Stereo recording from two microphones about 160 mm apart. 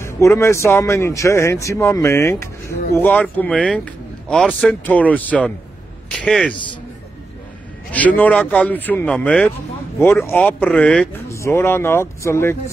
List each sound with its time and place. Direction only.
0.0 s a man's voice: 15° left (ahead or behind)
7.9 s speech: 10° left (ahead or behind)
11.2 s speech: 20° left (ahead or behind)